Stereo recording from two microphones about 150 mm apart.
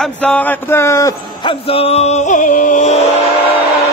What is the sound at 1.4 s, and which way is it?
Music, 35° left (ahead or behind).